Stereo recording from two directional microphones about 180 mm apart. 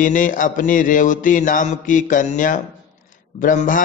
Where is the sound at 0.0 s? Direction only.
45° left (ahead or behind).